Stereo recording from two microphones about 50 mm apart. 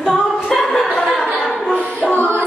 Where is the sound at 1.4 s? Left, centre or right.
Left.